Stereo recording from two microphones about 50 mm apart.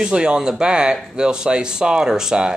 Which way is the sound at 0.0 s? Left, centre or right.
Centre.